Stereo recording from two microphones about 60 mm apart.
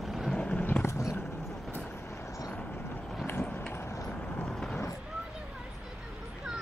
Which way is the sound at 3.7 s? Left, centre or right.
Left.